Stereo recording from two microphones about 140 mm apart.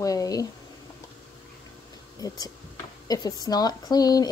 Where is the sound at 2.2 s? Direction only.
25° left (ahead or behind).